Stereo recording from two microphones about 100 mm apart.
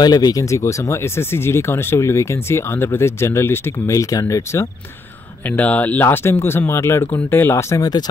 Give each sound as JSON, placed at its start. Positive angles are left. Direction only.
{"t": 0.0, "sound": "speech", "side_deg": 40}
{"t": 5.5, "sound": "speech", "side_deg": 15}